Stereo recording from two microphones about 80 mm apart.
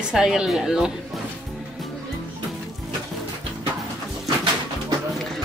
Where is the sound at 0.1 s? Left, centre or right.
Centre.